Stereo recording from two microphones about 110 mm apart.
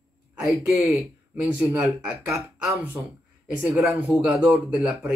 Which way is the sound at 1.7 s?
25° right (ahead or behind).